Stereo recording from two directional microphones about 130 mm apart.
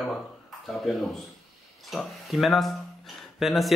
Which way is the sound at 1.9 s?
Centre (ahead or behind).